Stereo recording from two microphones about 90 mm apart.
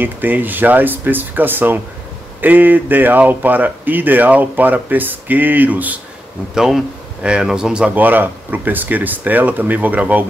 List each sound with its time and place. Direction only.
0.0 s speech: 20° right (ahead or behind)
6.5 s speech: 5° right (ahead or behind)